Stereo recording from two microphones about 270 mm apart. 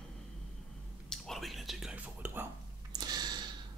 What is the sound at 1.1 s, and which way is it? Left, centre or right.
Whispering, centre.